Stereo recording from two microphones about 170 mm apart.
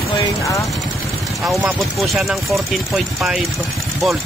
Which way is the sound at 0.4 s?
20° left (ahead or behind).